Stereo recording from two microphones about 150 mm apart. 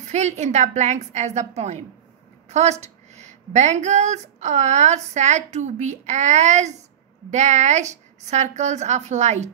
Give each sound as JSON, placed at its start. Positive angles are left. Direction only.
{"t": 0.0, "sound": "speech", "side_deg": -50}